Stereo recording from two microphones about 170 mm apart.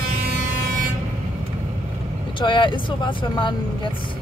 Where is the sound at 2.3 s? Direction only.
30° left (ahead or behind).